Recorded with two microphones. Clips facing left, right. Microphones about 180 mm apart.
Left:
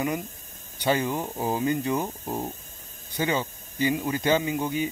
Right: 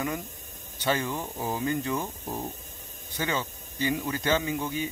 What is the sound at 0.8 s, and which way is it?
Speech, 15° left (ahead or behind).